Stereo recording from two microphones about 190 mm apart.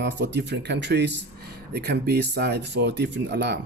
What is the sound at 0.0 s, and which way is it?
Speech, 65° right (ahead or behind).